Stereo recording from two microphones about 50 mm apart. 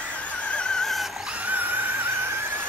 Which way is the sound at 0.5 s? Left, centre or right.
Centre.